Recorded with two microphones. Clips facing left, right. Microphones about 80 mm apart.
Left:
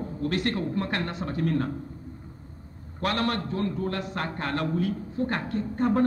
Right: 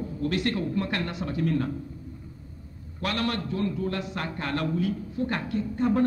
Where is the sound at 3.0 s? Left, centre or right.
Left.